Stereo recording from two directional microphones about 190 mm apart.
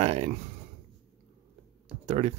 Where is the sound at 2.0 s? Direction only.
35° right (ahead or behind).